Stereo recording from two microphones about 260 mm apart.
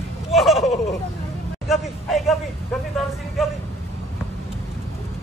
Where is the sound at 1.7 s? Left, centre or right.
Centre.